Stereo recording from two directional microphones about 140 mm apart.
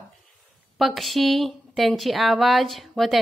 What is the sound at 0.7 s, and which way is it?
Speech, centre (ahead or behind).